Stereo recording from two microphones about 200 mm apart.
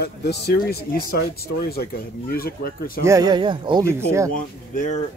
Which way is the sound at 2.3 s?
50° left (ahead or behind).